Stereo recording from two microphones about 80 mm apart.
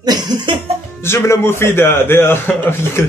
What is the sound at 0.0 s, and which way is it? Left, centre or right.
Cough, right.